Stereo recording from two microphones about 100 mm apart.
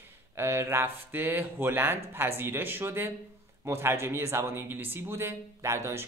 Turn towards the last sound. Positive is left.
turn(degrees=-25)  # may be behind; listen again after turning